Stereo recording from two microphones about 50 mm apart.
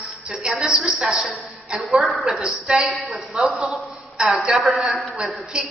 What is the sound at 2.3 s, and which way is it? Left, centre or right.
A woman's voice, centre.